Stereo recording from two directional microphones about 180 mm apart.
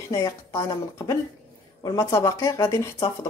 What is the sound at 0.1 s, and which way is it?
Speech, 15° left (ahead or behind).